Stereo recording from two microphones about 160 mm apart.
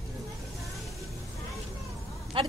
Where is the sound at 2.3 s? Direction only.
30° right (ahead or behind).